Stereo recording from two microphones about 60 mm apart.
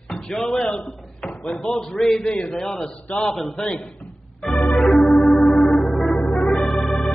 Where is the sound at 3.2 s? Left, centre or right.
Centre.